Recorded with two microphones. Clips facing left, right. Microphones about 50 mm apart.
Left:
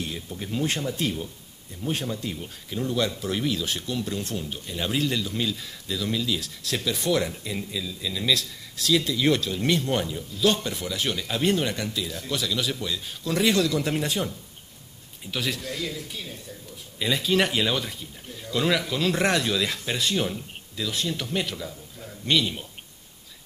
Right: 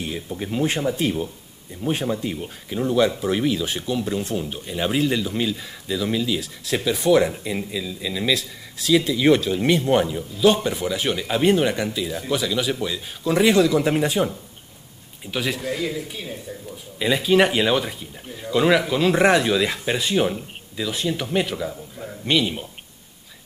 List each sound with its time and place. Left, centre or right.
0.0 s speech: centre
15.3 s speech: centre